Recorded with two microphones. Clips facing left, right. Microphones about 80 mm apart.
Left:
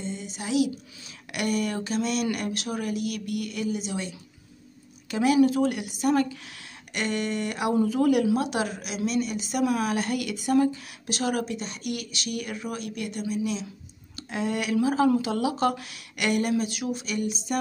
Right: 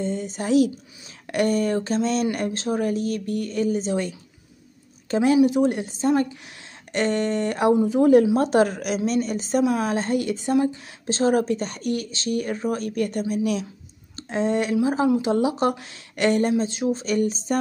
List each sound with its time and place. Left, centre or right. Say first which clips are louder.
0.0 s a woman's voice: right 7 dB; right
5.1 s a woman's voice: right 3 dB; right
7.7 s a woman's voice: right 6 dB; right
14.1 s speech: right 6 dB; right
17.0 s a woman's voice: right 7 dB; right